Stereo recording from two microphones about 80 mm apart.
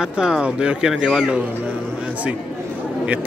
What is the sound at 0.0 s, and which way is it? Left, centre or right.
Speech, centre.